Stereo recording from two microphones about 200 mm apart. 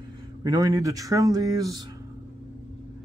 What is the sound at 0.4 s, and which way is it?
Speech, 15° right (ahead or behind).